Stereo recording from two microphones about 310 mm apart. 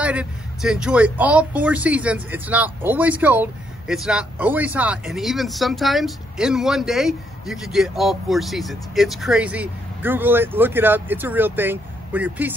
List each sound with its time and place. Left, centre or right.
0.0 s speech: centre